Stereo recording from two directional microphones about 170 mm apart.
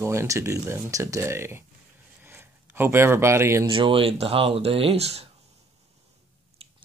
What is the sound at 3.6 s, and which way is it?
Speech, 30° right (ahead or behind).